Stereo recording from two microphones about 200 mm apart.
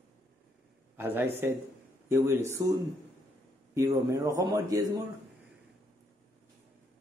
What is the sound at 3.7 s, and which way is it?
Speech, 15° right (ahead or behind).